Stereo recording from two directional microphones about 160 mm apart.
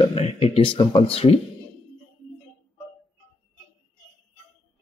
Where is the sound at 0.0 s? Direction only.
35° left (ahead or behind).